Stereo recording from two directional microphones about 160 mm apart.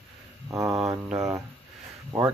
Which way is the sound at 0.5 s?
20° right (ahead or behind).